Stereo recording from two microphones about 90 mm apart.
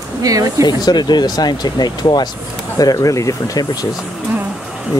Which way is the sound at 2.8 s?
40° left (ahead or behind).